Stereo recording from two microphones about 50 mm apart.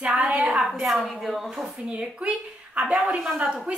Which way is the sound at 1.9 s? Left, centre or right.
Right.